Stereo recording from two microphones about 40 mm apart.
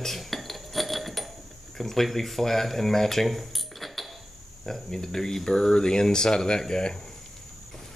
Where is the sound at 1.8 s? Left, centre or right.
Centre.